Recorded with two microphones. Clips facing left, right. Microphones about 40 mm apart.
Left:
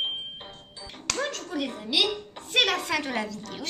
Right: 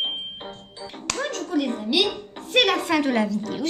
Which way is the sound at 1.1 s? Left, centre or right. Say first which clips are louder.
Right 3 dB; centre.